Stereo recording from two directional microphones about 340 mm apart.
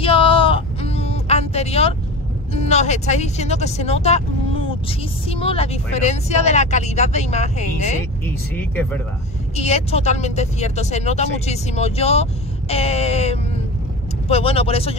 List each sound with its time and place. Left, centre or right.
0.0 s a sound: centre
2.5 s speech: centre
5.3 s speech: centre
8.3 s speech: centre
9.6 s speech: centre